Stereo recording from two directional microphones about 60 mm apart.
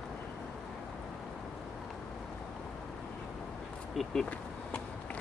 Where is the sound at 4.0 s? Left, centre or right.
Centre.